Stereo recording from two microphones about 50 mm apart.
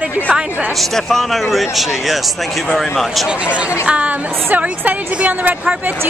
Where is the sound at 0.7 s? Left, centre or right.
Centre.